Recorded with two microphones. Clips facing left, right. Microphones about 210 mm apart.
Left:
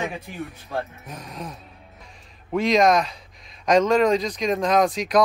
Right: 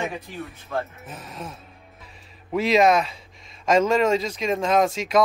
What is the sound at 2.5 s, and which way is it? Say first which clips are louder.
Speech: even; 5° right (ahead or behind).